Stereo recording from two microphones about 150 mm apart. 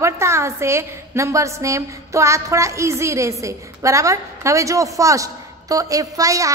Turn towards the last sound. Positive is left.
turn(degrees=-20)  # may be behind; listen again after turning